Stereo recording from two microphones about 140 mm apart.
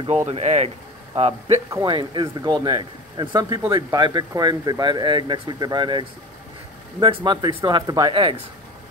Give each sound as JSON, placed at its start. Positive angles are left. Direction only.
{"t": 0.3, "sound": "speech", "side_deg": -50}
{"t": 1.9, "sound": "speech", "side_deg": -35}
{"t": 8.1, "sound": "speech", "side_deg": -40}